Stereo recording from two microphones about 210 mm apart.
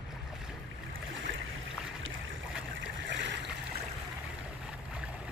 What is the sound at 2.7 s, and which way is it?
Stream, 60° right (ahead or behind).